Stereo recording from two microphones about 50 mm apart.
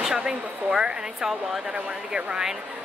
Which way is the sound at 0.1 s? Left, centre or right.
Centre.